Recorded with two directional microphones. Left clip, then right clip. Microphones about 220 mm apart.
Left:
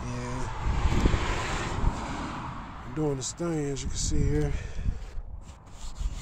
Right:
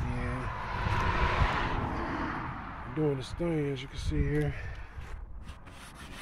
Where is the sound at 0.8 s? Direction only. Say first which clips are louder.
Right 1 dB; 60° left (ahead or behind).